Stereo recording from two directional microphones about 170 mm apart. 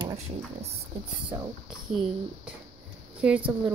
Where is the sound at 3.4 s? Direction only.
30° right (ahead or behind).